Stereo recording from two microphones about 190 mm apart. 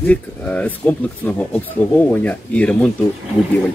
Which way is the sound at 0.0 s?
10° left (ahead or behind).